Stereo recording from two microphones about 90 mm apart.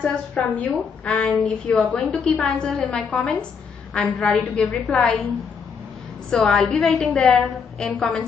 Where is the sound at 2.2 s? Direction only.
15° left (ahead or behind).